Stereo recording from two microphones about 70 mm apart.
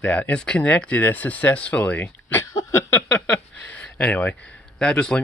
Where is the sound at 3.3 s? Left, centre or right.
Left.